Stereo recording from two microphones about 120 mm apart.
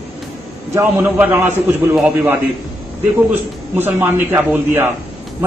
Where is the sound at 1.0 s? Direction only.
15° right (ahead or behind).